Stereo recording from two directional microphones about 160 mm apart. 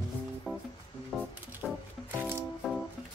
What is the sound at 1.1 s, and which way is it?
Music, centre (ahead or behind).